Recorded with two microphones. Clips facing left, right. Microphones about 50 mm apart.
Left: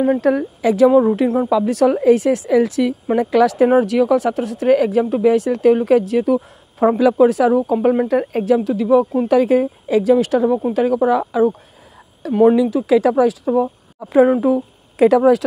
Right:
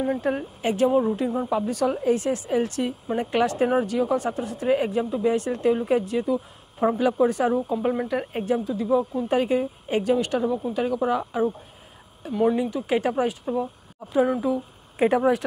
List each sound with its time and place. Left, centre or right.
0.2 s speech: left
12.5 s speech: left
14.2 s speech: left
15.0 s speech: left